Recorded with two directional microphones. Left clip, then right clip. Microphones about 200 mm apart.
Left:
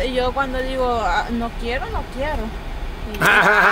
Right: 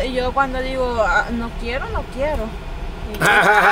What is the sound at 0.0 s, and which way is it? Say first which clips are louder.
Speech: right 1 dB; 5° left (ahead or behind).